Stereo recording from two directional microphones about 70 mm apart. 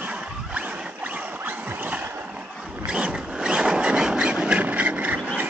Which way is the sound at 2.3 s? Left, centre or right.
Centre.